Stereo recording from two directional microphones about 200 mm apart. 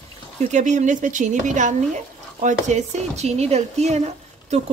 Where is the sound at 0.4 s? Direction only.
35° right (ahead or behind).